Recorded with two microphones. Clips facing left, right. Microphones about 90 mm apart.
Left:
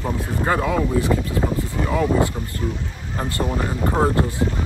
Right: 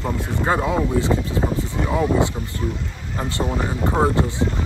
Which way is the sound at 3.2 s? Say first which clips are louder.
Even; 25° right (ahead or behind).